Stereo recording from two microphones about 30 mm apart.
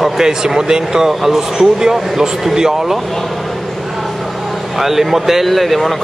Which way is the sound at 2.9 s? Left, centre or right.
Centre.